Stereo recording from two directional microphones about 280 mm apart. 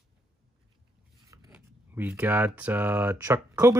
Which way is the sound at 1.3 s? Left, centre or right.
Centre.